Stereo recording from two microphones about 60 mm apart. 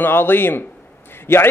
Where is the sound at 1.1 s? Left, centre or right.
Left.